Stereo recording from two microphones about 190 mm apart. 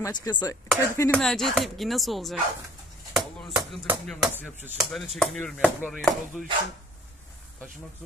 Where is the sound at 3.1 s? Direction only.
Centre (ahead or behind).